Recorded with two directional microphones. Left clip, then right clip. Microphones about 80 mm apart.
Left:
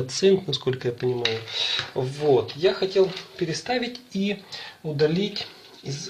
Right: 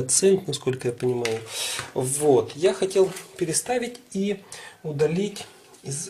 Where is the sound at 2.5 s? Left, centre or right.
Right.